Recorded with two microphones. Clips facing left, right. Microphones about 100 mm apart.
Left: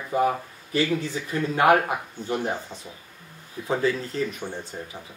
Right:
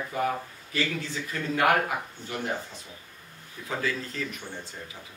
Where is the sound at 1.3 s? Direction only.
25° left (ahead or behind).